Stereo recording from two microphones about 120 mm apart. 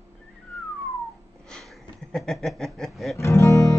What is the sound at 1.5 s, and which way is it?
Sniff, 5° left (ahead or behind).